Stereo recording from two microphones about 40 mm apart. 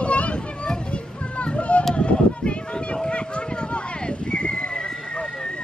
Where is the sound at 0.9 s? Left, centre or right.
Left.